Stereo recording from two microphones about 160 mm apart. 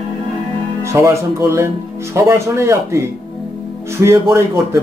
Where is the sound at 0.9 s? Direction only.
15° right (ahead or behind).